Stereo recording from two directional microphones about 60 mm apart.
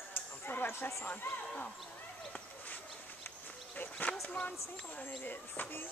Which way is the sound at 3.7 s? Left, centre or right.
Left.